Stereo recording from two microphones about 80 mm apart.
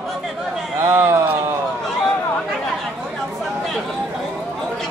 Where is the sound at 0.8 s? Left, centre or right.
Right.